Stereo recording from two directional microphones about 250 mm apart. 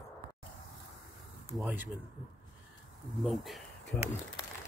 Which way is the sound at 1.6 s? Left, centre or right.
Centre.